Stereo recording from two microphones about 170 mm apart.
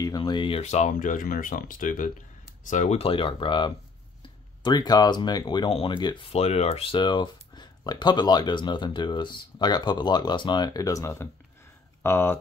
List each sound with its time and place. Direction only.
0.0 s speech: 25° left (ahead or behind)